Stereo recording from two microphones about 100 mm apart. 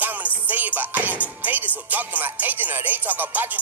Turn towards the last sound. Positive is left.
turn(degrees=-20)  # may be behind; listen again after turning